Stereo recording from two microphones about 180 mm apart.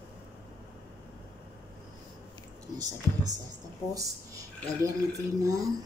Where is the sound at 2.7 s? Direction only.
20° right (ahead or behind).